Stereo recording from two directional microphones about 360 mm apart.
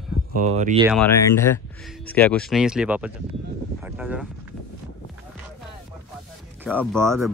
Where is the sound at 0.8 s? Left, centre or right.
Centre.